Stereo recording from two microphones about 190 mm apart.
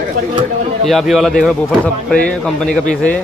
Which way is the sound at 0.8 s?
Centre (ahead or behind).